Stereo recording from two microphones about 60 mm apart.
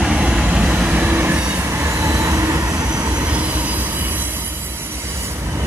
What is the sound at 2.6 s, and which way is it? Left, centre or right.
Train, right.